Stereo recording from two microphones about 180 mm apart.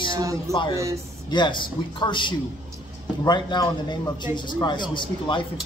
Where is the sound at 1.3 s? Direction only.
25° left (ahead or behind).